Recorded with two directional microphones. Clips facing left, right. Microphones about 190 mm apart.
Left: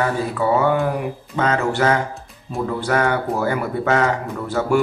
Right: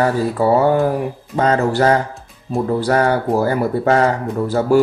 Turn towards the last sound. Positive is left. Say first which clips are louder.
# right 5 dB
turn(degrees=-35)  # may be behind; listen again after turning